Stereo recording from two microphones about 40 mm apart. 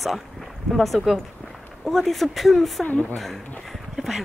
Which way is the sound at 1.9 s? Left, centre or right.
Centre.